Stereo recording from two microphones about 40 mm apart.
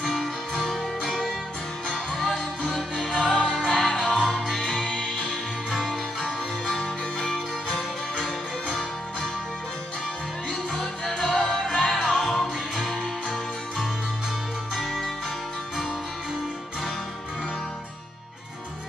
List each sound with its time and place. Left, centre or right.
0.0 s music: centre
1.9 s music: centre
4.8 s music: centre
5.1 s music: centre
7.3 s music: centre
10.5 s music: centre
14.8 s music: centre